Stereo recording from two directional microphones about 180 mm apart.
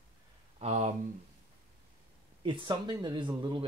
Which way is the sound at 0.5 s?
40° right (ahead or behind).